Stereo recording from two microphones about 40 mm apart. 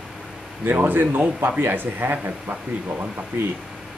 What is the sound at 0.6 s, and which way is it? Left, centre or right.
Speech, right.